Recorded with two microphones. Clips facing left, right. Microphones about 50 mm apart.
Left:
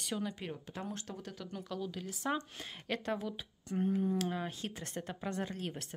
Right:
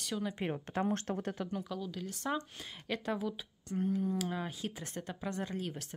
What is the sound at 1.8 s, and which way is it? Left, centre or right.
Speech, centre.